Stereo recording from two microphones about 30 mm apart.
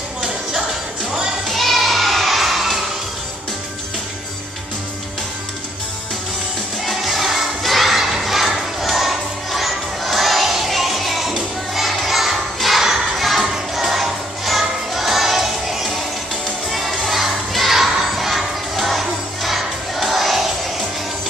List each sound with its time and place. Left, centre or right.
0.2 s music: right
1.5 s a sound: centre
6.9 s music: centre
8.0 s crowd: centre
13.3 s music: centre